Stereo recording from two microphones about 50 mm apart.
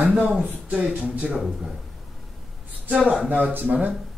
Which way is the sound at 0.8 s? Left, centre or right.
Centre.